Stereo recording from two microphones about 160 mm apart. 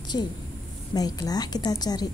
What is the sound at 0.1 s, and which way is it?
A woman's voice, 30° left (ahead or behind).